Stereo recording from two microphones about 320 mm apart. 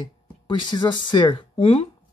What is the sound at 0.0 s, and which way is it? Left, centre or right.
Speech, centre.